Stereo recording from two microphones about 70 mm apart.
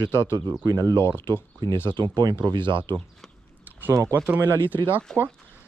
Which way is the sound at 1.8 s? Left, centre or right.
Right.